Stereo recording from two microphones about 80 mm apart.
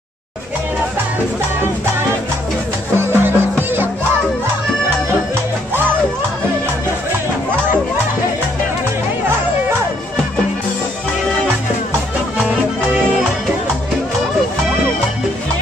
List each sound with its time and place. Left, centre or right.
3.0 s music: right